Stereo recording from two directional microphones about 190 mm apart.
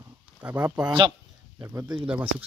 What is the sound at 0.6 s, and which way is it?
Speech, 20° right (ahead or behind).